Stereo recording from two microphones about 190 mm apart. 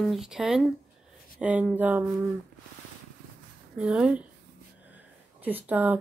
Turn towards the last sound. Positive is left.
turn(degrees=-10)  # may be behind; listen again after turning